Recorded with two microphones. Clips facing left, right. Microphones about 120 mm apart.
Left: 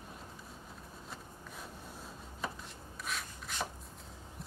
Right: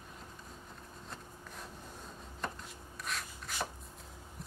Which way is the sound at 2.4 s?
5° left (ahead or behind).